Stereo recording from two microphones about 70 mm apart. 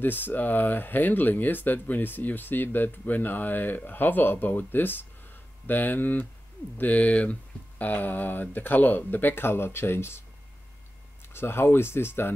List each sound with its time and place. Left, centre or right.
0.0 s speech: left
11.3 s speech: left